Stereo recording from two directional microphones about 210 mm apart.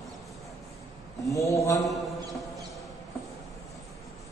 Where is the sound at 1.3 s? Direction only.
15° left (ahead or behind).